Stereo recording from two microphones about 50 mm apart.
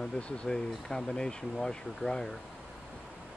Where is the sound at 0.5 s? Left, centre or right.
Centre.